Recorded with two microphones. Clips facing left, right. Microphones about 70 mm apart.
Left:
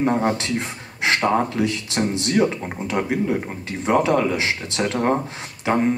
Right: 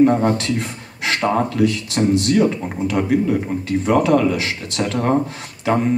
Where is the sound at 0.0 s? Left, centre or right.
Left.